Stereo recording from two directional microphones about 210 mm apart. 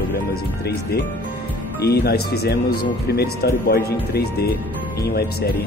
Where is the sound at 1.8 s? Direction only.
50° left (ahead or behind).